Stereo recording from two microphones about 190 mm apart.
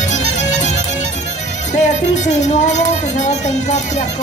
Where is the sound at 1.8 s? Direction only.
40° left (ahead or behind).